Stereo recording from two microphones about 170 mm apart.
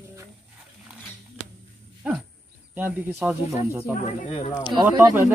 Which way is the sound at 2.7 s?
10° right (ahead or behind).